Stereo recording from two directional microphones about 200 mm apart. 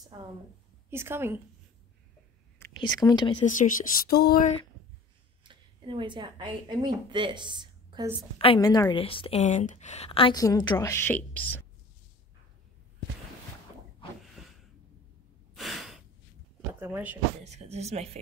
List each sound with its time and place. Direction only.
0.8 s a woman's voice: 10° right (ahead or behind)
2.8 s a woman's voice: 20° left (ahead or behind)
3.4 s speech: 40° left (ahead or behind)
5.4 s speech: 25° right (ahead or behind)
8.4 s a woman's voice: 20° left (ahead or behind)
14.4 s a sound: centre (ahead or behind)
16.8 s a woman's voice: 10° right (ahead or behind)
17.4 s a woman's voice: 35° right (ahead or behind)